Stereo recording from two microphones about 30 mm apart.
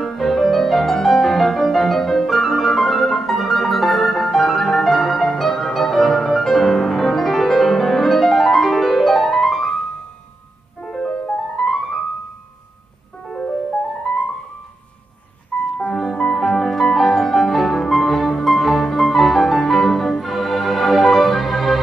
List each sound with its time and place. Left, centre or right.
0.0 s music: centre
10.8 s music: left
13.3 s music: centre
13.7 s music: left
15.5 s music: left; by 21.8 s centre